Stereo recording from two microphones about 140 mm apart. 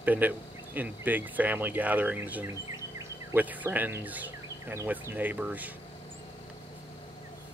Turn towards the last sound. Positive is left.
turn(degrees=-10)  # may be behind; listen again after turning